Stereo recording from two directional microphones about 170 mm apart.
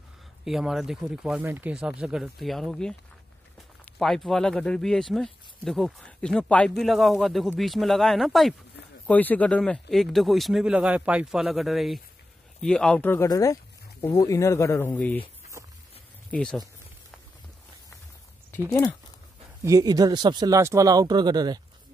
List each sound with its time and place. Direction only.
0.5 s speech: centre (ahead or behind)
4.0 s speech: centre (ahead or behind)
16.3 s speech: 5° left (ahead or behind)
18.7 s speech: 15° left (ahead or behind)
19.6 s speech: 20° right (ahead or behind)